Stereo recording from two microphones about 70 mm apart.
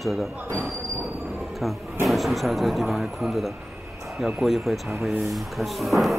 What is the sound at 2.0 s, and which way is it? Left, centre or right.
Speech, centre.